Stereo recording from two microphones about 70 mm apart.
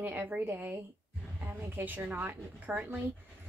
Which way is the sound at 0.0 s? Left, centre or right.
Right.